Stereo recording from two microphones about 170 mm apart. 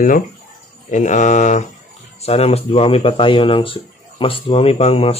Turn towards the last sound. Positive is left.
turn(degrees=35)  # may be behind; listen again after turning